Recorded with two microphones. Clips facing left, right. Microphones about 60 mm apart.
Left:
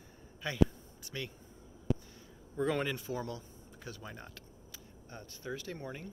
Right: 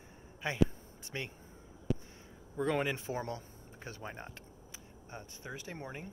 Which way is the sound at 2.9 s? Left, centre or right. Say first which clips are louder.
Right 1 dB; right.